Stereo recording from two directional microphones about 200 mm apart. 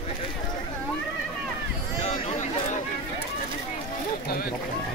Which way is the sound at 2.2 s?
30° left (ahead or behind).